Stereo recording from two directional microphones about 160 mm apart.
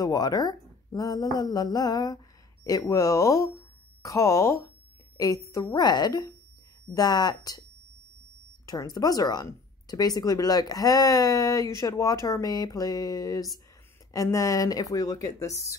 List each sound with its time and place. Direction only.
0.0 s a woman's voice: 25° left (ahead or behind)
8.6 s speech: 25° left (ahead or behind)